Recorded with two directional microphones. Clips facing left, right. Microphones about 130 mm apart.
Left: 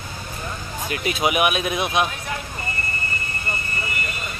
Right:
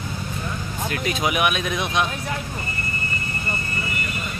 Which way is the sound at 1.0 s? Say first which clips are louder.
Left 2 dB; 10° left (ahead or behind).